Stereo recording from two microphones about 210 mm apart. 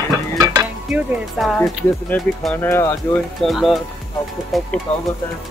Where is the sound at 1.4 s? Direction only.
Centre (ahead or behind).